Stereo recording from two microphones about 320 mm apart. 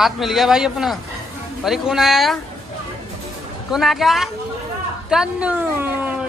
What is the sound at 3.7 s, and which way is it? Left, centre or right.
Speech, centre.